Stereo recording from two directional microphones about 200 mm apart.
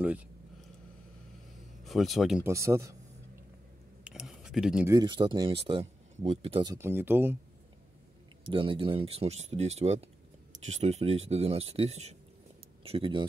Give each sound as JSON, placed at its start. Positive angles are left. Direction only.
{"t": 0.0, "sound": "a sound", "side_deg": -5}
{"t": 1.9, "sound": "speech", "side_deg": 0}
{"t": 2.4, "sound": "speech", "side_deg": -15}
{"t": 4.0, "sound": "a sound", "side_deg": -5}
{"t": 4.8, "sound": "speech", "side_deg": -20}
{"t": 6.6, "sound": "speech", "side_deg": -15}
{"t": 8.5, "sound": "speech", "side_deg": -25}